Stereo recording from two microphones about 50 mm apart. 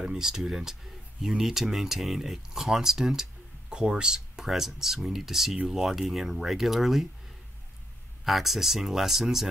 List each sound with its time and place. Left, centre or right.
0.0 s speech: centre
8.3 s speech: centre